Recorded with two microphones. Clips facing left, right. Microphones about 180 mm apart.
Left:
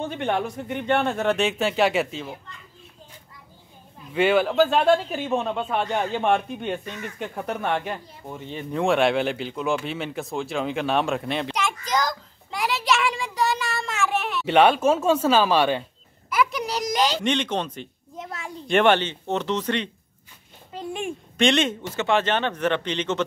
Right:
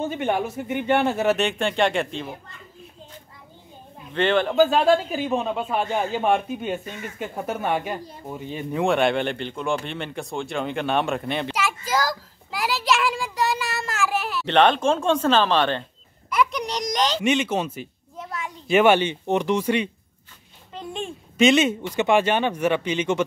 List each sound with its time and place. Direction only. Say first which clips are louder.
0.0 s speech: right 1 dB; 5° right (ahead or behind)
4.1 s speech: left 1 dB; 10° left (ahead or behind)
14.5 s speech: left 1 dB; 10° left (ahead or behind)
17.2 s speech: right 2 dB; 10° right (ahead or behind)
18.1 s a sound: right 2 dB; 25° left (ahead or behind)
18.7 s speech: right 2 dB; 5° right (ahead or behind)
20.7 s a sound: left 1 dB; 10° left (ahead or behind)
21.4 s speech: right 4 dB; 5° right (ahead or behind)